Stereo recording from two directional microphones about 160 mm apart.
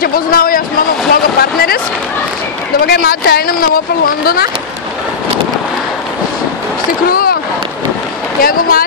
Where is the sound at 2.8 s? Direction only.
75° left (ahead or behind).